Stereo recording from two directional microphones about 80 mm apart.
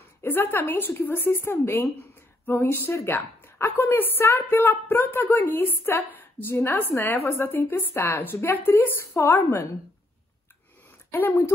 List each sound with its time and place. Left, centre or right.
0.2 s a woman's voice: left
11.1 s a woman's voice: left